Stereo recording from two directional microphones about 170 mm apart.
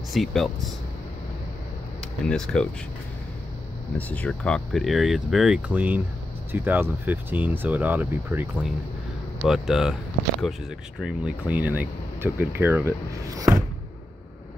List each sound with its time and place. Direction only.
0.1 s speech: centre (ahead or behind)
2.2 s speech: 5° left (ahead or behind)
4.1 s speech: 5° left (ahead or behind); by 13.6 s 20° right (ahead or behind)